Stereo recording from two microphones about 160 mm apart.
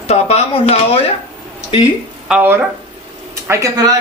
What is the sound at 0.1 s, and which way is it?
Speech, 40° left (ahead or behind).